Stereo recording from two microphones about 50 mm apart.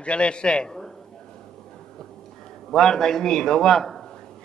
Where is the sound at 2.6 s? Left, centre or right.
Centre.